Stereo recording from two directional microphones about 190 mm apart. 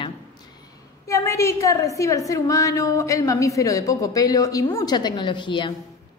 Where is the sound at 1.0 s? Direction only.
15° left (ahead or behind).